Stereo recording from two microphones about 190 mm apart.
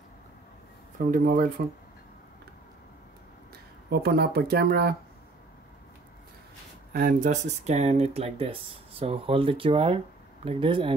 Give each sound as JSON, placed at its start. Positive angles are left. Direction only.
{"t": 0.9, "sound": "speech", "side_deg": -45}
{"t": 3.9, "sound": "speech", "side_deg": -55}
{"t": 6.9, "sound": "speech", "side_deg": -50}